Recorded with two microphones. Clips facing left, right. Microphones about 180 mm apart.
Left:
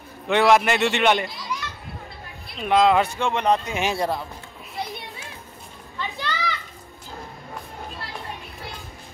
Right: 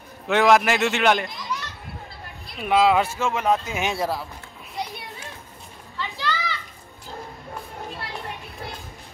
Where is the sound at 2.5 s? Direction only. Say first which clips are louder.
Left 1 dB; 5° right (ahead or behind).